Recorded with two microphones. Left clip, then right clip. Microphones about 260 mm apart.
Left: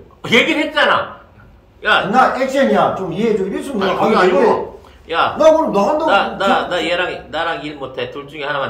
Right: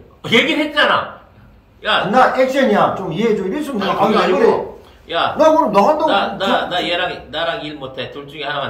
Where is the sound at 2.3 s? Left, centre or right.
Centre.